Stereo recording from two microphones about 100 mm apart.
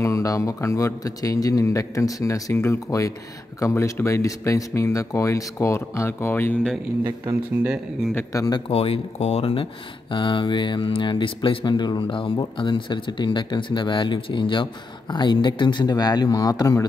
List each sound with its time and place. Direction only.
0.0 s speech: 30° left (ahead or behind)
2.5 s speech: 25° left (ahead or behind)
8.3 s speech: 35° left (ahead or behind)
8.6 s speech: 70° left (ahead or behind)
10.1 s speech: 55° left (ahead or behind); by 16.8 s 40° left (ahead or behind)